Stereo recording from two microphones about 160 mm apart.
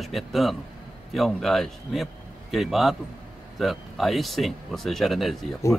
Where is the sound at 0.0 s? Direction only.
Centre (ahead or behind).